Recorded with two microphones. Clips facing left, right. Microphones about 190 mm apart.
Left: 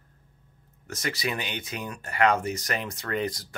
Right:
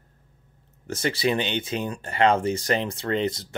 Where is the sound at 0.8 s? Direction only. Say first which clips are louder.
Right 7 dB; 30° right (ahead or behind).